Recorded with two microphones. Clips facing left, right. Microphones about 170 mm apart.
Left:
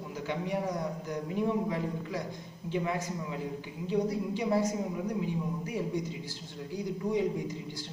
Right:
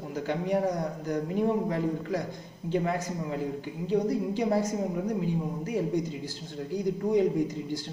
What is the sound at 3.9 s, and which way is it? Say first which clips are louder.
Speech: right 3 dB; 45° right (ahead or behind).